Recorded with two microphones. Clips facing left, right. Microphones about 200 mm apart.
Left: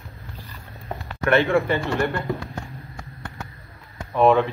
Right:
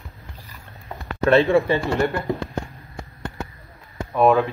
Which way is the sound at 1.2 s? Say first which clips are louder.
Right 3 dB; 30° right (ahead or behind).